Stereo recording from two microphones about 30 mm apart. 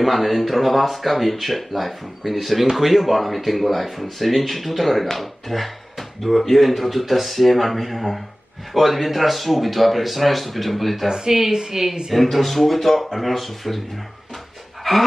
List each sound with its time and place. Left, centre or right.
0.0 s speech: centre
11.1 s a woman's voice: right
12.1 s speech: centre
14.8 s dog: centre